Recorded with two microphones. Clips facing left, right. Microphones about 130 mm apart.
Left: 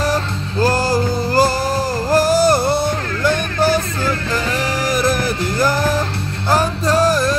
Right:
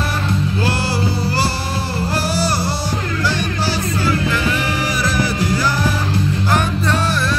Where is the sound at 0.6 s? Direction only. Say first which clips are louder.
Left 4 dB; 45° left (ahead or behind).